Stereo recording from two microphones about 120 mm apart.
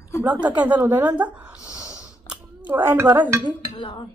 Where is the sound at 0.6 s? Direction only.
10° right (ahead or behind).